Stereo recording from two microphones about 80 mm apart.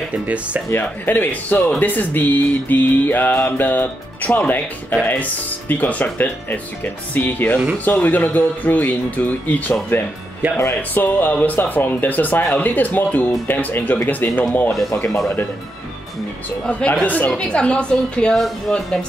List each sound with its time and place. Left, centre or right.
0.7 s music: left
16.6 s a woman's voice: centre